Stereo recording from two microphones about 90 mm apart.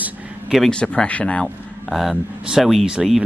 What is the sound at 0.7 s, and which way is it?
Speech, 10° left (ahead or behind).